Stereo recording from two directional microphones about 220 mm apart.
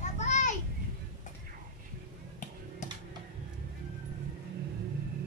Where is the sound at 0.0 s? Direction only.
30° left (ahead or behind).